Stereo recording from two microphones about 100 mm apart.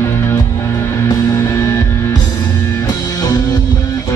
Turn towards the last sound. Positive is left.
turn(degrees=40)  # may be behind; listen again after turning